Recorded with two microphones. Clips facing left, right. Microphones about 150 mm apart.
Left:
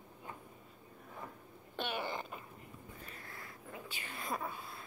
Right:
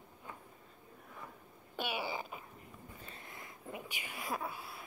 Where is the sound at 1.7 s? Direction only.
10° right (ahead or behind).